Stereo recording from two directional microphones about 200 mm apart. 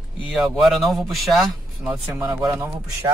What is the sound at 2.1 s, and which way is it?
Speech, 15° right (ahead or behind).